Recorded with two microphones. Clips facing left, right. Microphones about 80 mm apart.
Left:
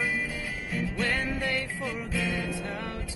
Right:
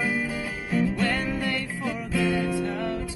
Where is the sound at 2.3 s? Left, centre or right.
Right.